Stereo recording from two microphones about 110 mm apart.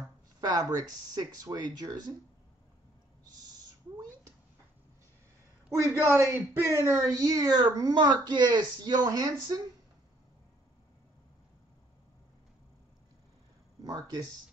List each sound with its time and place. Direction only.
0.4 s a child's voice: 35° right (ahead or behind)
5.9 s a man's voice: 25° right (ahead or behind)
13.8 s a child's voice: 35° right (ahead or behind)